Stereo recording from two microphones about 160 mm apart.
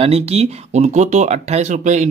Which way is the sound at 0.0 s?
40° right (ahead or behind).